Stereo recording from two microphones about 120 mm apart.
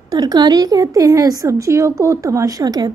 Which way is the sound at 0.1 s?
35° right (ahead or behind).